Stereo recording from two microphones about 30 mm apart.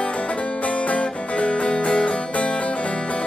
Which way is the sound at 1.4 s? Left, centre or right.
Left.